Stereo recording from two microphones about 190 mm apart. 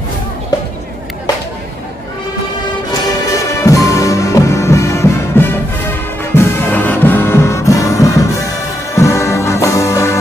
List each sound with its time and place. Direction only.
2.9 s music: 20° left (ahead or behind)